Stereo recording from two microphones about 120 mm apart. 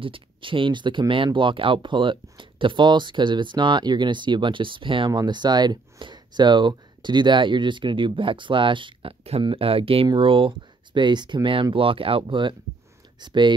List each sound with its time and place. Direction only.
0.0 s speech: 45° right (ahead or behind)